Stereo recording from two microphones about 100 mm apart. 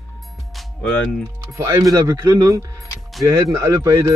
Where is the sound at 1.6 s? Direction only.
35° right (ahead or behind).